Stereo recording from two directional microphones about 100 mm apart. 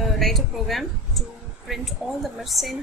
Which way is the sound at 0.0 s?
Centre (ahead or behind).